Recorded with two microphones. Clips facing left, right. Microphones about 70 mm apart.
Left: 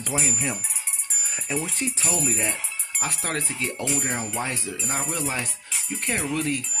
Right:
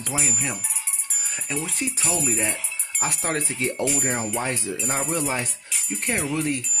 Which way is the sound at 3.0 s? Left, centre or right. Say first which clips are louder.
Right 3 dB; right.